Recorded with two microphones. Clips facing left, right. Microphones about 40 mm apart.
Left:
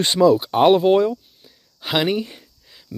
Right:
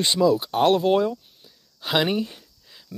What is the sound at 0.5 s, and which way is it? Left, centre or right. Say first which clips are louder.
Speech: left 5 dB; left.